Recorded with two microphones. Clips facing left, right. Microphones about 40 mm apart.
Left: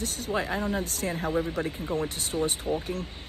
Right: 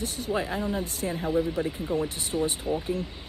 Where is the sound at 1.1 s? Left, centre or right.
Left.